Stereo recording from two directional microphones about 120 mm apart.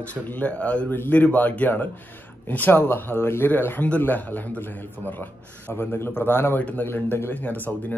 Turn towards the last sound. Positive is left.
turn(degrees=15)  # may be behind; listen again after turning